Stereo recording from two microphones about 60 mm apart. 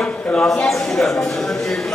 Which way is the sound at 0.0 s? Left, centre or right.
Centre.